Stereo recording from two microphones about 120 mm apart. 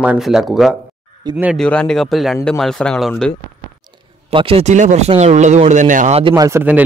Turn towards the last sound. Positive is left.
turn(degrees=-25)  # may be behind; listen again after turning